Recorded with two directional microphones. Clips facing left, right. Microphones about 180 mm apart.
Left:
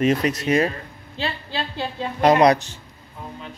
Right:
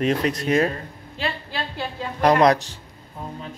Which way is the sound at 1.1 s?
25° left (ahead or behind).